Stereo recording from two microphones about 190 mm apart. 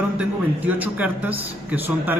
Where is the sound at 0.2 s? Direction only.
10° right (ahead or behind).